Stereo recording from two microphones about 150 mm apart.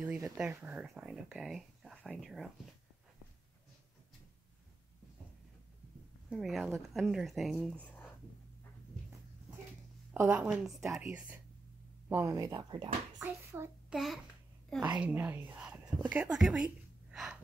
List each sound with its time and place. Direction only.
0.0 s speech: 5° right (ahead or behind)
6.3 s speech: centre (ahead or behind)
10.1 s a woman's voice: 5° right (ahead or behind); by 12.9 s 30° right (ahead or behind)
13.2 s a child's voice: 15° right (ahead or behind)
13.9 s speech: centre (ahead or behind)